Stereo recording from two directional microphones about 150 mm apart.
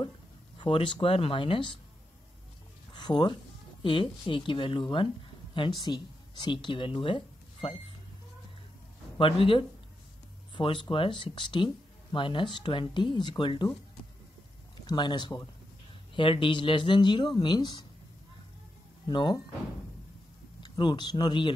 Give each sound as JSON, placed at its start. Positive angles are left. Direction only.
{"t": 0.6, "sound": "speech", "side_deg": 35}
{"t": 2.9, "sound": "a sound", "side_deg": 30}
{"t": 3.8, "sound": "speech", "side_deg": 35}
{"t": 9.2, "sound": "speech", "side_deg": 35}
{"t": 14.9, "sound": "speech", "side_deg": 30}
{"t": 19.0, "sound": "speech", "side_deg": 30}
{"t": 20.6, "sound": "speech", "side_deg": 30}